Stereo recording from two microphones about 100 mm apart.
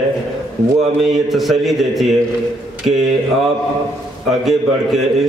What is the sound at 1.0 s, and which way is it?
A man's voice, centre (ahead or behind).